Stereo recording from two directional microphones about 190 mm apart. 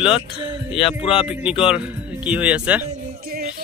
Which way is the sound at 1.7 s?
5° right (ahead or behind).